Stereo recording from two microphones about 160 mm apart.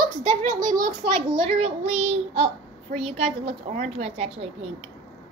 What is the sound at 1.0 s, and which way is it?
A woman's voice, 35° right (ahead or behind).